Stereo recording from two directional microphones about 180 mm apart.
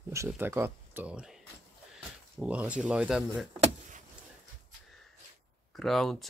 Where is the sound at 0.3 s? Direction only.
15° right (ahead or behind).